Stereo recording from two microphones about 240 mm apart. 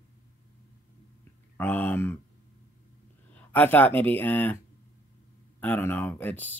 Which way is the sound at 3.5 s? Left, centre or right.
Centre.